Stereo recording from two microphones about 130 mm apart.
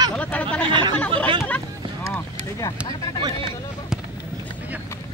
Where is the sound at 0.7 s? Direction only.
40° right (ahead or behind).